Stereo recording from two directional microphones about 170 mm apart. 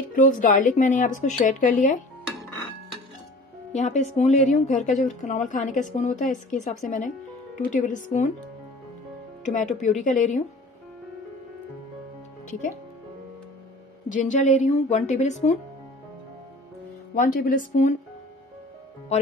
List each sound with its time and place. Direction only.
0.1 s speech: 50° left (ahead or behind)
3.7 s speech: 45° left (ahead or behind)
9.4 s speech: 45° left (ahead or behind)
14.0 s speech: 45° left (ahead or behind)
17.1 s speech: 55° left (ahead or behind)